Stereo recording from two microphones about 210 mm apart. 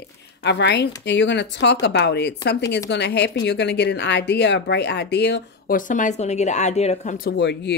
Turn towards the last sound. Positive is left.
turn(degrees=55)  # may be behind; listen again after turning